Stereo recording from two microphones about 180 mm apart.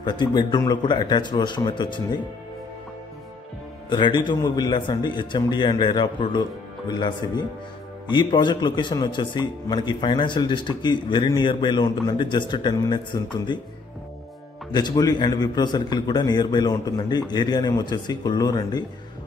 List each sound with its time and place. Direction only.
0.0 s a man's voice: 25° left (ahead or behind)
3.9 s a man's voice: 25° left (ahead or behind)
14.7 s a man's voice: 25° left (ahead or behind)